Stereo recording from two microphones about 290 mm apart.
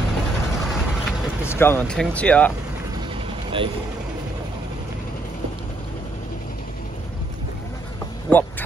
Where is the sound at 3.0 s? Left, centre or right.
Centre.